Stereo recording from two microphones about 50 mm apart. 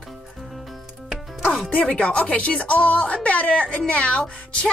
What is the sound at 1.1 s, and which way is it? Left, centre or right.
Music, centre.